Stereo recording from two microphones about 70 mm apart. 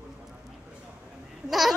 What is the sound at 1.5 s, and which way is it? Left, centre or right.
Baby cry, centre.